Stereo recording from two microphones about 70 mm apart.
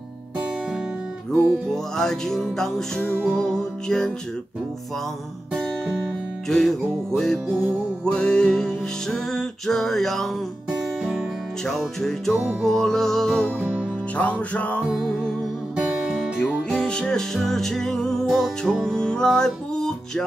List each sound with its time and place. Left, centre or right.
1.3 s music: centre
5.5 s guitar: centre
6.5 s music: centre
11.6 s music: centre
13.6 s music: right
14.1 s music: left
15.7 s music: centre
16.6 s music: centre